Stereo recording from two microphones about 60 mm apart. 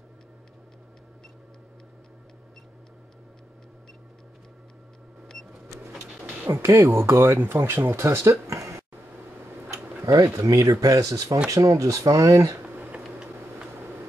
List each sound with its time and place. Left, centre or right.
6.4 s speech: right
10.0 s speech: right
12.6 s a sound: right